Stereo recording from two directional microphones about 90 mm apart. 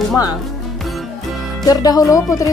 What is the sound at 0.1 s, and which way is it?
Speech, 45° left (ahead or behind).